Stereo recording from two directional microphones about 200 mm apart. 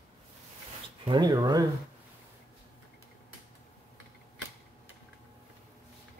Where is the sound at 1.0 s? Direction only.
20° right (ahead or behind).